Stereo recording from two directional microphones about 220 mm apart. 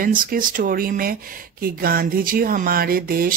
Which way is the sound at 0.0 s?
40° right (ahead or behind).